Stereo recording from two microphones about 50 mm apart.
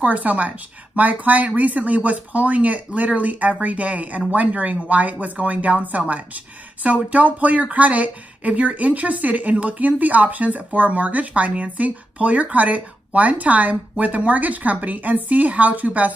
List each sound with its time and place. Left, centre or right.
0.0 s a woman's voice: right